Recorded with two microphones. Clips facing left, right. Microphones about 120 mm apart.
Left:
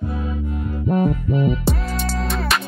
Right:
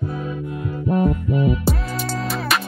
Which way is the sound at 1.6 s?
5° right (ahead or behind).